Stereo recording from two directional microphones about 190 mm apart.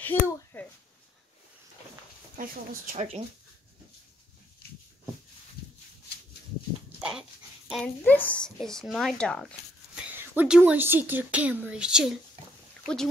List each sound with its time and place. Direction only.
0.0 s speech: 10° left (ahead or behind)
2.9 s speech: 35° right (ahead or behind)
7.0 s speech: 5° right (ahead or behind)
10.1 s speech: 10° right (ahead or behind)